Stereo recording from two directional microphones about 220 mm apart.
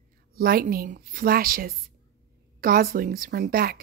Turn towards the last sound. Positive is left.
turn(degrees=-40)  # may be behind; listen again after turning